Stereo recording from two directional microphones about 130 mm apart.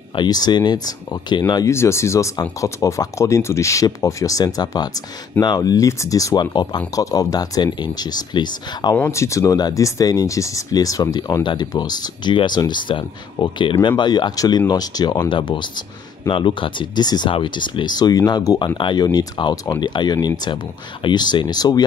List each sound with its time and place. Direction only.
0.1 s speech: 35° left (ahead or behind)
9.1 s speech: 25° left (ahead or behind)
18.8 s speech: 40° left (ahead or behind)